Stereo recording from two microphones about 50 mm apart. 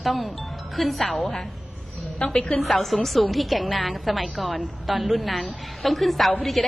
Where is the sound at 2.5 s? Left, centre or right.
Centre.